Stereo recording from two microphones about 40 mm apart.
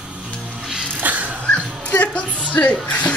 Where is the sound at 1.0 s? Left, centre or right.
Right.